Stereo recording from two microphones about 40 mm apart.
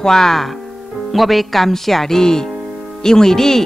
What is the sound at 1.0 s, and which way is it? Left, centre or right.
Speech, centre.